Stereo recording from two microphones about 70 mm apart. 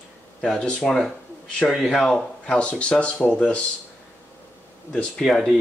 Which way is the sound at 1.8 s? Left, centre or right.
Centre.